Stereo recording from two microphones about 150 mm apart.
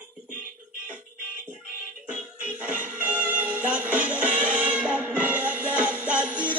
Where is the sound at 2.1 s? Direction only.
10° right (ahead or behind).